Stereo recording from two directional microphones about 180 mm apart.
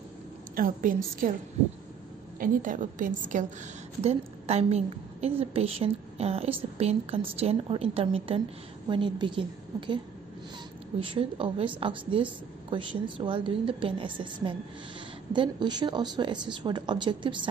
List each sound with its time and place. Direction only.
0.6 s a woman's voice: 50° right (ahead or behind); by 9.9 s 25° right (ahead or behind)
11.0 s a woman's voice: 30° right (ahead or behind)